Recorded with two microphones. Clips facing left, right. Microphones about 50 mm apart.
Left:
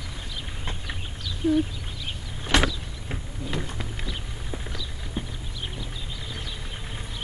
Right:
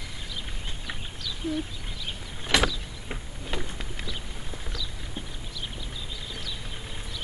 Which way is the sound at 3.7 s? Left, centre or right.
Centre.